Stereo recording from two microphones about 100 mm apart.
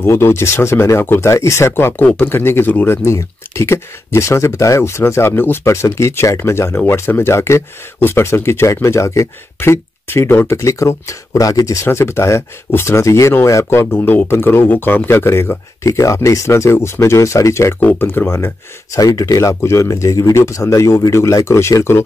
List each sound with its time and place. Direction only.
0.0 s speech: 25° left (ahead or behind)
17.7 s speech: 20° left (ahead or behind)
18.9 s speech: 35° left (ahead or behind)